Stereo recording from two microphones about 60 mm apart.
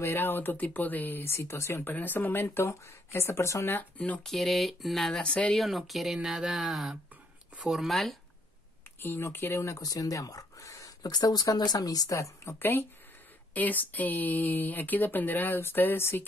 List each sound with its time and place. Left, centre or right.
0.0 s speech: left
1.2 s speech: left
1.9 s speech: left
4.2 s speech: centre
9.3 s speech: left
9.8 s speech: left
12.5 s speech: left
13.5 s speech: left